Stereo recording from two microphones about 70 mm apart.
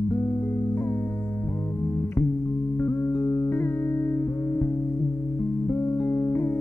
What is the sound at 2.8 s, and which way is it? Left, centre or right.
Music, left.